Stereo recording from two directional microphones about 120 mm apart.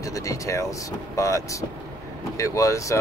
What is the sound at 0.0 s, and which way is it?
Speech, 30° left (ahead or behind).